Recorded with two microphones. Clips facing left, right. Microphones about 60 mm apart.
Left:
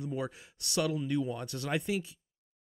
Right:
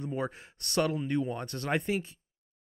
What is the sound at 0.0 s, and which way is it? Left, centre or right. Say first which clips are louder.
Speech: right 2 dB; right.